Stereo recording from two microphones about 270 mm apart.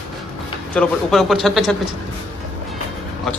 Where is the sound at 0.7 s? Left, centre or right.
Centre.